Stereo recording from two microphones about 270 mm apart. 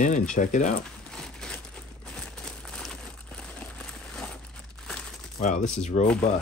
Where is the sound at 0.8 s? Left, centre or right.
Centre.